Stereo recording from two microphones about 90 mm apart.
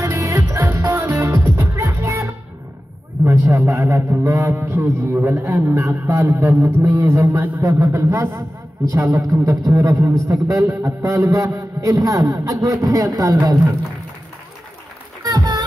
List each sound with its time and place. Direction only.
0.0 s music: 35° right (ahead or behind)
3.3 s a man's voice: 35° right (ahead or behind)
15.2 s a sound: 45° right (ahead or behind)